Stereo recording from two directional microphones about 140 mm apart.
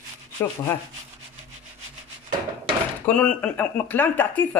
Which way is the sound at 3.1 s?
10° left (ahead or behind).